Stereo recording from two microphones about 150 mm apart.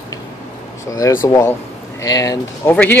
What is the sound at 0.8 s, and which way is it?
Speech, 20° left (ahead or behind).